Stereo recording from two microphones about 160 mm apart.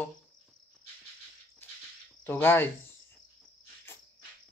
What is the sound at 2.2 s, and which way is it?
Speech, 15° left (ahead or behind).